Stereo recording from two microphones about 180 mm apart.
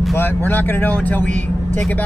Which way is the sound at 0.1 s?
10° left (ahead or behind).